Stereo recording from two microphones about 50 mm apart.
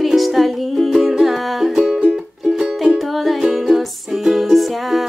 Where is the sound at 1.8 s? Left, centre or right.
Centre.